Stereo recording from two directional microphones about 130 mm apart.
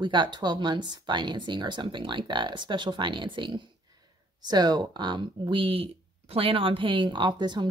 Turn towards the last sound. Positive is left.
turn(degrees=-35)  # may be behind; listen again after turning